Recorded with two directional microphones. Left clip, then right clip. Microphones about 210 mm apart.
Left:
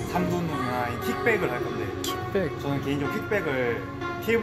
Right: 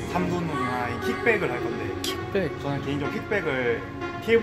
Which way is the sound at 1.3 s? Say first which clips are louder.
Right 1 dB; 5° right (ahead or behind).